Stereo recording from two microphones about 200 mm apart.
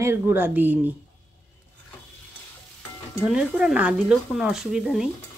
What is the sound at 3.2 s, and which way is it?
Speech, 5° right (ahead or behind).